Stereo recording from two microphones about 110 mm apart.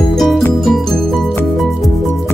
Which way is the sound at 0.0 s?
Centre (ahead or behind).